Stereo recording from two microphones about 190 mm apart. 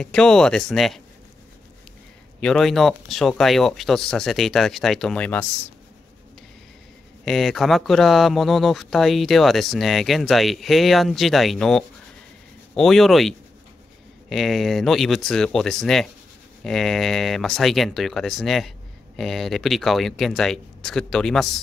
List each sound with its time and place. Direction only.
0.0 s speech: 5° left (ahead or behind)
2.4 s speech: centre (ahead or behind)
7.2 s speech: centre (ahead or behind)
14.3 s speech: centre (ahead or behind)